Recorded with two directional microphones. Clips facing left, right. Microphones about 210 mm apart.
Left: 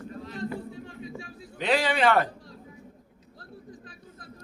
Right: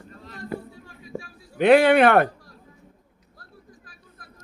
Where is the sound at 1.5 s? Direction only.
60° right (ahead or behind).